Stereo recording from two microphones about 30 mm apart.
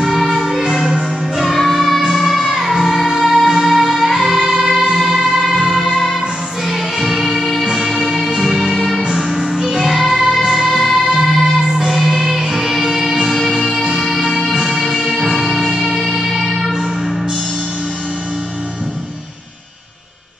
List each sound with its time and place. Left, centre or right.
0.0 s music: centre
14.9 s music: centre